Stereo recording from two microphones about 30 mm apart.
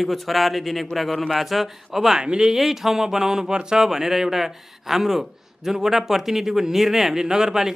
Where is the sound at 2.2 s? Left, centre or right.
Right.